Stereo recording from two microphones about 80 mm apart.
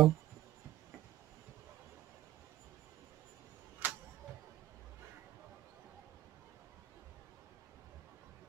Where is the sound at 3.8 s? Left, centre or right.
Right.